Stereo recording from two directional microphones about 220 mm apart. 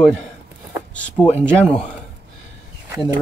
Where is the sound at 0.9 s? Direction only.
5° left (ahead or behind).